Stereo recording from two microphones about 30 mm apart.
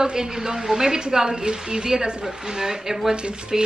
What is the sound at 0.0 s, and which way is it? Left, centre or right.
A woman's voice, right.